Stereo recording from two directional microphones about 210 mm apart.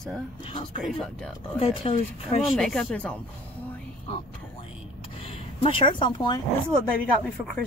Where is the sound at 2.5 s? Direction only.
Centre (ahead or behind).